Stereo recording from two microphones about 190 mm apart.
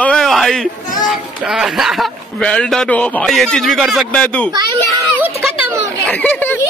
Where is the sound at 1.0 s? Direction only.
5° right (ahead or behind).